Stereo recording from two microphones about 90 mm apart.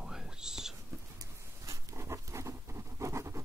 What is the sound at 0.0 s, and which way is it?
Whispering, 5° right (ahead or behind).